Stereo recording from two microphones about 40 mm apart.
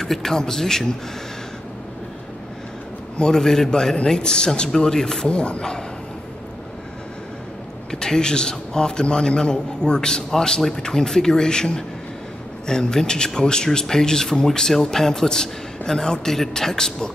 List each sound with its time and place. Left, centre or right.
0.0 s speech: centre
3.2 s speech: centre
3.9 s a man's voice: left
7.9 s a man's voice: centre